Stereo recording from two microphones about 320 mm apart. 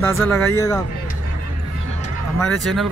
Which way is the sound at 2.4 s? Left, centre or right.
Centre.